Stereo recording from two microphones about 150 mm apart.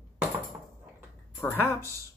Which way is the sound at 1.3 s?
15° left (ahead or behind).